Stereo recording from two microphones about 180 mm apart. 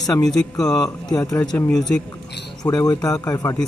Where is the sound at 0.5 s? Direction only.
20° left (ahead or behind).